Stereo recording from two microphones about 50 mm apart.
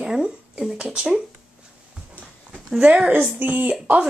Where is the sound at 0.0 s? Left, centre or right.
Centre.